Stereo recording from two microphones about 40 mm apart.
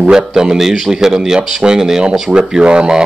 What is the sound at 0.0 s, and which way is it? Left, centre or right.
Speech, right.